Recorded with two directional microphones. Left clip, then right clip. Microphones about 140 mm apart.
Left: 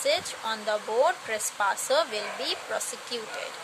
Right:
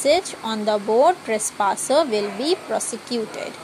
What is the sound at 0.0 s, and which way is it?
Speech, 30° right (ahead or behind).